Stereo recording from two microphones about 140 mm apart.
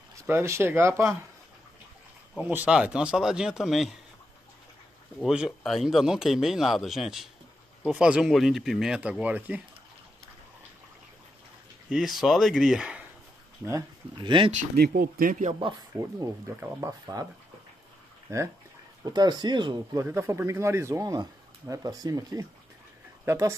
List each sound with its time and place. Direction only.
0.3 s speech: 20° right (ahead or behind)
2.4 s speech: 10° right (ahead or behind)
5.2 s speech: 5° right (ahead or behind)
11.9 s speech: centre (ahead or behind)
14.1 s speech: 35° right (ahead or behind)
14.5 s speech: 75° right (ahead or behind)
16.5 s speech: 15° right (ahead or behind)
17.0 s a man's voice: 25° right (ahead or behind)
19.0 s a man's voice: 30° right (ahead or behind)